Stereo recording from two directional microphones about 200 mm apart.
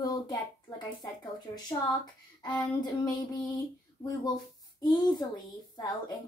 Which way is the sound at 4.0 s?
25° left (ahead or behind).